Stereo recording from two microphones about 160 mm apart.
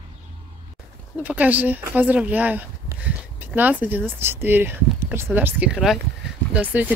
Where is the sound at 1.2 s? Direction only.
10° right (ahead or behind).